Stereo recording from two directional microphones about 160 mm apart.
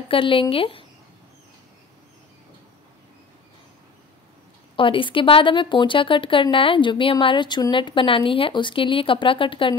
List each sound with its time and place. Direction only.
0.1 s speech: 35° left (ahead or behind)
4.7 s speech: 30° left (ahead or behind)